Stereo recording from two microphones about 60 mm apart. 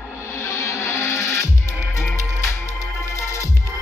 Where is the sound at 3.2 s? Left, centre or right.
Left.